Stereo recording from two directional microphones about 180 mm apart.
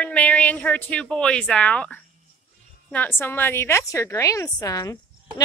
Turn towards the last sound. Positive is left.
turn(degrees=20)  # may be behind; listen again after turning